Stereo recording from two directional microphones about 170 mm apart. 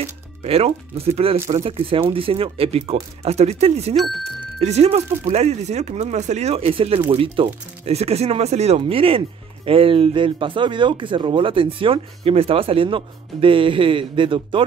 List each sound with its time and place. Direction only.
0.0 s speech: 40° right (ahead or behind)
3.9 s speech: centre (ahead or behind)
4.6 s speech: 40° right (ahead or behind)